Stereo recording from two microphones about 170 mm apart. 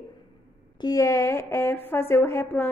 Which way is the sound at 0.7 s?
20° left (ahead or behind).